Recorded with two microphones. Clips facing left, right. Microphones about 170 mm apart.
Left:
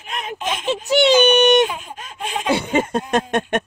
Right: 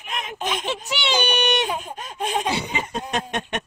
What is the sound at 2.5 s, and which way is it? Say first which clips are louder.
Speech: left 8 dB; 50° left (ahead or behind).